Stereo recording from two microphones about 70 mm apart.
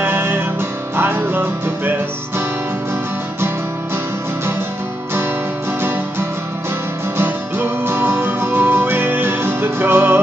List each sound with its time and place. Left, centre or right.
0.0 s music: right
5.8 s music: right